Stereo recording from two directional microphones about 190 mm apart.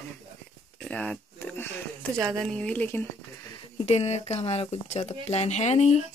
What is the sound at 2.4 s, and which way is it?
Speech, 5° left (ahead or behind).